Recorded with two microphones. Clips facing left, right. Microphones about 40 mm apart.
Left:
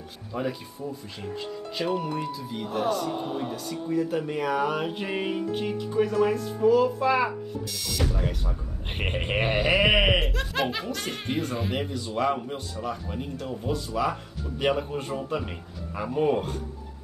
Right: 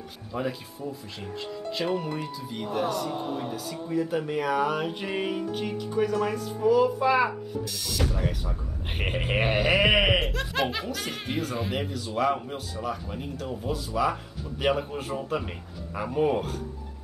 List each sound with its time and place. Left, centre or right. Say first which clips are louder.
0.3 s a man's voice: left 1 dB; centre